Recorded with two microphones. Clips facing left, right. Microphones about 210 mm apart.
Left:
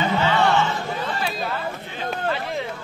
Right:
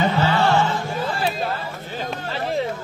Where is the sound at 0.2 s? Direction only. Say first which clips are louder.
Left 1 dB; 35° right (ahead or behind).